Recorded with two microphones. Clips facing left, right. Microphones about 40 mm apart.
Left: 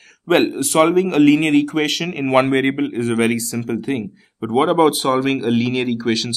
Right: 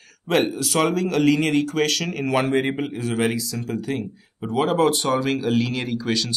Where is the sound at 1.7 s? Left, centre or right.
Centre.